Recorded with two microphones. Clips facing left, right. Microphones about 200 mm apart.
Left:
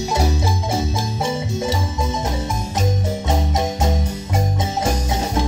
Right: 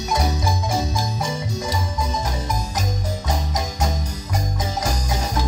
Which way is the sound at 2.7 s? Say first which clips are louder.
Left 5 dB; 25° left (ahead or behind).